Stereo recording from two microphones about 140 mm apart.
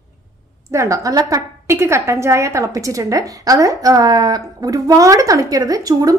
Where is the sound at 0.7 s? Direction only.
20° right (ahead or behind).